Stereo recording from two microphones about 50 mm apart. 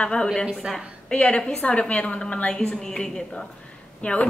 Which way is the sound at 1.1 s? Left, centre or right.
Left.